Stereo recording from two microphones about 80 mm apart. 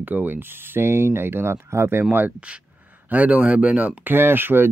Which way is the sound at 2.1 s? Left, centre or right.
Centre.